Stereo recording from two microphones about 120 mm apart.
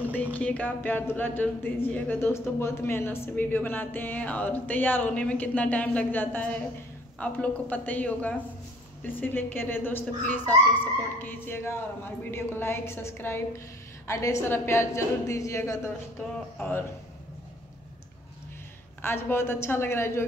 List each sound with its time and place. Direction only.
0.0 s a woman's voice: 15° left (ahead or behind)
16.3 s speech: 15° left (ahead or behind)
18.9 s a woman's voice: 20° left (ahead or behind)